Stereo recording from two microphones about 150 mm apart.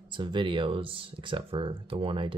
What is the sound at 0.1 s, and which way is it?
Speech, 30° right (ahead or behind).